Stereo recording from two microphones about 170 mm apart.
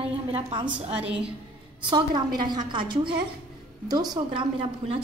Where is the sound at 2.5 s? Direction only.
25° right (ahead or behind).